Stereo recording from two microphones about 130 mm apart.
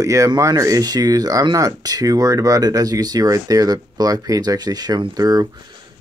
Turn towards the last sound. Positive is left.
turn(degrees=-30)  # may be behind; listen again after turning